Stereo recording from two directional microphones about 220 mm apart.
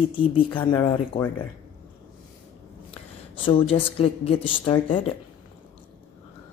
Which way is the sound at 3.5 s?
25° left (ahead or behind).